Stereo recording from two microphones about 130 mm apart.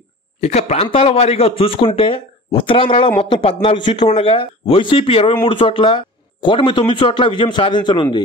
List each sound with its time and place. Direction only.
0.4 s speech: 55° left (ahead or behind); by 8.2 s 40° left (ahead or behind)